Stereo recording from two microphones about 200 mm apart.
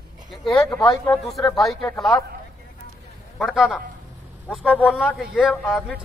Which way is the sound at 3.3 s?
Centre (ahead or behind).